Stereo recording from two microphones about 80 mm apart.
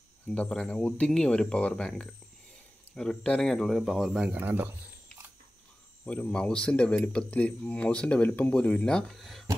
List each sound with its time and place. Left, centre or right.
0.5 s speech: centre
3.5 s speech: centre
4.3 s speech: right
6.0 s speech: centre